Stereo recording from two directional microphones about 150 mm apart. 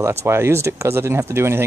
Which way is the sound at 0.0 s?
20° right (ahead or behind).